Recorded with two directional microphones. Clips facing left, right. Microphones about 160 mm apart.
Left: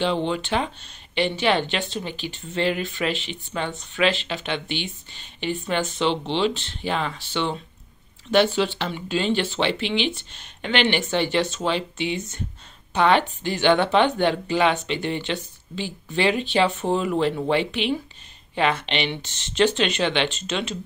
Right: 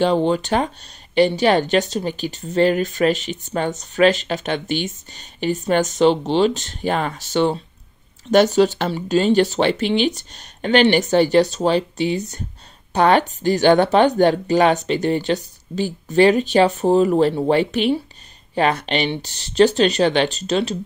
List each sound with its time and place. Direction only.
0.0 s speech: 40° right (ahead or behind)